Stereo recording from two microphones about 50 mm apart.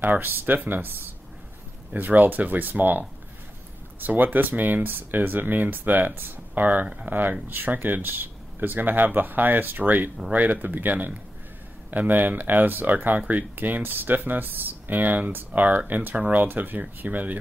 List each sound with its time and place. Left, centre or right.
0.0 s speech: right